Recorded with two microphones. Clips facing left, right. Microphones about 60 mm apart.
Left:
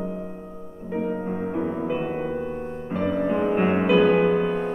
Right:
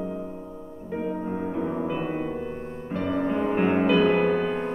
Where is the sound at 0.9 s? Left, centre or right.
Centre.